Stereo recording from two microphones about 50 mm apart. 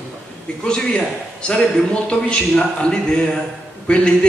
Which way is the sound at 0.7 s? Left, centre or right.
Centre.